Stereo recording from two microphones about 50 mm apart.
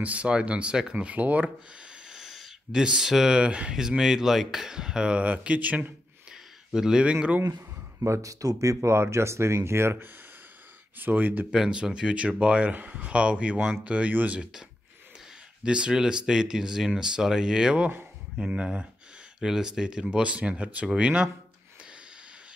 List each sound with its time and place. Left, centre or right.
0.0 s speech: right
0.9 s speech: right
1.8 s a sound: centre
3.4 s speech: right
3.7 s speech: centre; by 5.9 s right
6.3 s a sound: centre
7.1 s speech: right
8.0 s speech: right
11.0 s speech: right
11.5 s speech: centre; by 14.1 s right
15.6 s speech: centre